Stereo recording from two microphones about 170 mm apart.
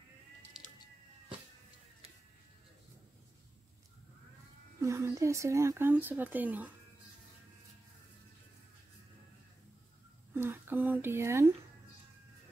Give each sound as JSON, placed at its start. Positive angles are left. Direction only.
{"t": 4.7, "sound": "speech", "side_deg": -15}
{"t": 10.3, "sound": "speech", "side_deg": -10}